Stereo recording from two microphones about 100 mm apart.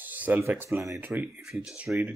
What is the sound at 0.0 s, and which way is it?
Speech, 20° right (ahead or behind).